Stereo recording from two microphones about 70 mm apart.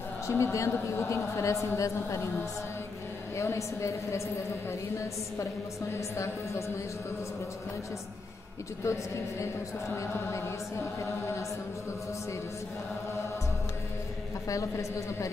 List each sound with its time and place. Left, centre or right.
0.3 s a woman's voice: left
3.3 s a woman's voice: left
8.8 s a woman's voice: left
14.5 s a woman's voice: left